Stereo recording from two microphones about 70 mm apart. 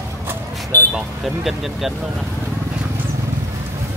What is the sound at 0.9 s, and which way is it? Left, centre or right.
Speech, centre.